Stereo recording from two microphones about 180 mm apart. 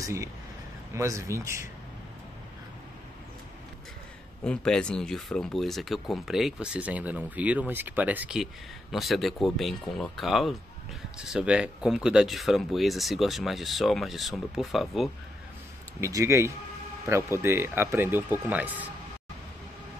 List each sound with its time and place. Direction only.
0.0 s speech: 20° right (ahead or behind)
4.4 s speech: 5° left (ahead or behind)
16.0 s speech: 15° right (ahead or behind)